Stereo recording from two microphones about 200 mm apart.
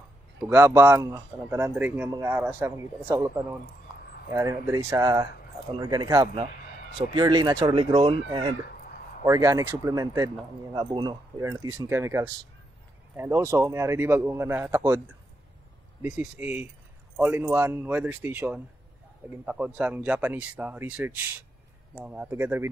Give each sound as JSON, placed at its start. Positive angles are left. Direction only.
{"t": 0.5, "sound": "speech", "side_deg": -10}
{"t": 9.2, "sound": "speech", "side_deg": -15}
{"t": 16.0, "sound": "speech", "side_deg": -10}